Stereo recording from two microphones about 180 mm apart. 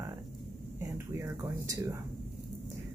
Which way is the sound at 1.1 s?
15° right (ahead or behind).